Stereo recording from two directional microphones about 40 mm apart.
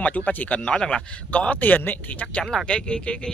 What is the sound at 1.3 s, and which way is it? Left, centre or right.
Speech, left.